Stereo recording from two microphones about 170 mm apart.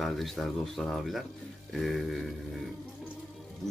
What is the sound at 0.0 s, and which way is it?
Speech, centre (ahead or behind).